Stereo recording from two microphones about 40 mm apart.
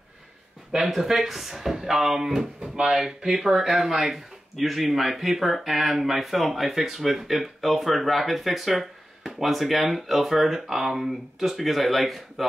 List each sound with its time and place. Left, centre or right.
0.7 s speech: centre; by 3.3 s right
3.3 s speech: centre